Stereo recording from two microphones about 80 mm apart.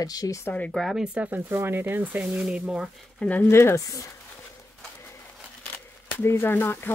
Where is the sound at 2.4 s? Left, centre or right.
Centre.